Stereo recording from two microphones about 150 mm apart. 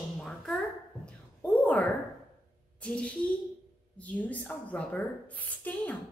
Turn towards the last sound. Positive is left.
turn(degrees=10)  # may be behind; listen again after turning